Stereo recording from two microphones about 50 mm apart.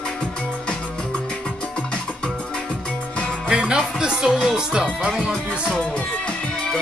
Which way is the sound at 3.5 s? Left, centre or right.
Centre.